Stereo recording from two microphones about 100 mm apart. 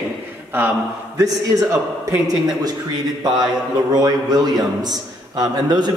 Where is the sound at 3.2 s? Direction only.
45° right (ahead or behind).